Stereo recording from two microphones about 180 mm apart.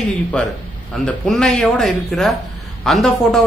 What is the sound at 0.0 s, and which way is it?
A man's voice, 5° left (ahead or behind).